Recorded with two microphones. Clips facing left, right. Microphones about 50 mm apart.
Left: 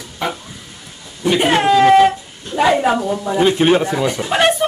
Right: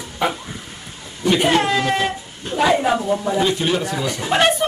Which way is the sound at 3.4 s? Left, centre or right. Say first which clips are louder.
Left 6 dB; left.